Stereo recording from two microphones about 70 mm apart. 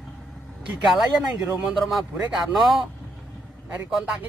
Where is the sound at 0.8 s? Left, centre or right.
Centre.